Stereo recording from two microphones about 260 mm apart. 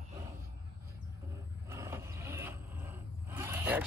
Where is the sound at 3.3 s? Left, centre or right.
Centre.